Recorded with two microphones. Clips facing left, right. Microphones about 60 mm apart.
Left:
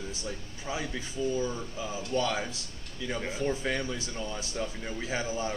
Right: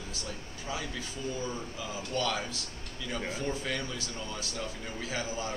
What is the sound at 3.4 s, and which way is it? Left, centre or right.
Speech, left.